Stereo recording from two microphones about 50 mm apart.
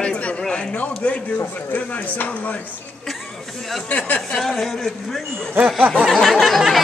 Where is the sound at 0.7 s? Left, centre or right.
Left.